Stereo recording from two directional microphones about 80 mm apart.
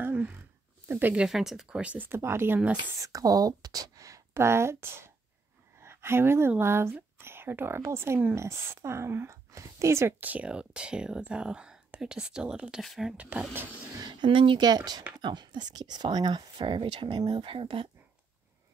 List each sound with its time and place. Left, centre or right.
0.0 s a sound: centre
0.8 s speech: right
1.1 s speech: centre
3.0 s speech: right
5.8 s a sound: right
6.6 s a woman's voice: right
10.2 s speech: centre
12.8 s speech: centre
13.2 s speech: centre
14.0 s speech: right